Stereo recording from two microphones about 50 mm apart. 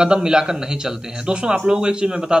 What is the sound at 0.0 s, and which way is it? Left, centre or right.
Speech, centre.